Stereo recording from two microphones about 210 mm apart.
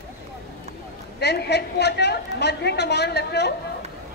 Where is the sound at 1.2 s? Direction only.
50° left (ahead or behind).